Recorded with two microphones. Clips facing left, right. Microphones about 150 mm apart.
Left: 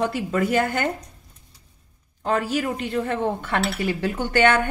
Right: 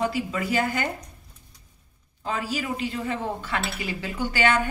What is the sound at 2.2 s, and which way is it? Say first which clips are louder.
A woman's voice: left 6 dB; 60° left (ahead or behind).